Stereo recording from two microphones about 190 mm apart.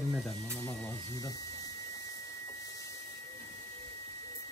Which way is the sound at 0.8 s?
20° left (ahead or behind).